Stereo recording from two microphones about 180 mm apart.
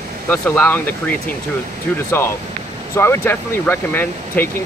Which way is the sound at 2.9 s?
15° left (ahead or behind).